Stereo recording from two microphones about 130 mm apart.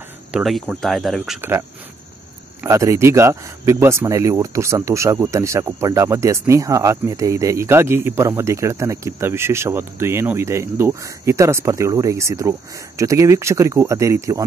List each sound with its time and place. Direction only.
0.3 s speech: centre (ahead or behind)
2.6 s speech: 20° right (ahead or behind)